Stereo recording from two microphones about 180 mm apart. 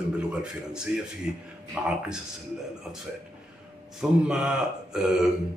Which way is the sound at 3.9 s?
5° right (ahead or behind).